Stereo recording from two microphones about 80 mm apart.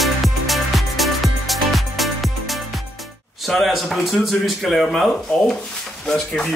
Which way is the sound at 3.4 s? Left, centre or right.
Centre.